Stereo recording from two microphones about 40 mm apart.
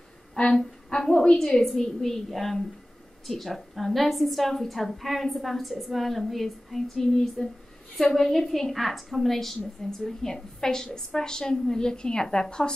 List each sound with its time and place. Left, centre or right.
0.5 s a woman's voice: centre